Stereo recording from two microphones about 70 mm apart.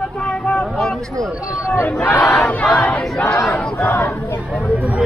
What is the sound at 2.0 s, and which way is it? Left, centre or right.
Battle cry, left.